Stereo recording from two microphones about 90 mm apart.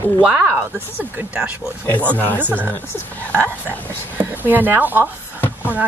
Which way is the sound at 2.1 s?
20° left (ahead or behind).